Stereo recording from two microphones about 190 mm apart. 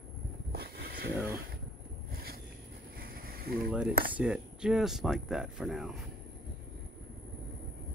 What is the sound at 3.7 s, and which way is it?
Speech, 5° right (ahead or behind).